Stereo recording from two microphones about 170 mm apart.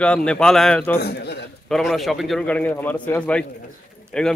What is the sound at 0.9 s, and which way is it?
Speech, 75° left (ahead or behind).